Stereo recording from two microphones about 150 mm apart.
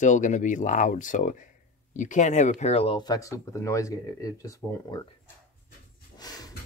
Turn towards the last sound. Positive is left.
turn(degrees=25)  # may be behind; listen again after turning